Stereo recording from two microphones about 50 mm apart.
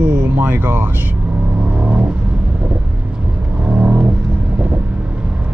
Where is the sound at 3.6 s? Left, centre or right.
Right.